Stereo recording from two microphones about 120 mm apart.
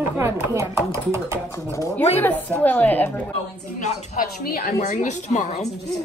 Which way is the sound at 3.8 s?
75° left (ahead or behind).